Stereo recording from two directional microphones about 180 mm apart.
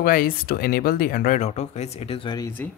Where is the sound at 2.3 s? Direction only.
15° left (ahead or behind).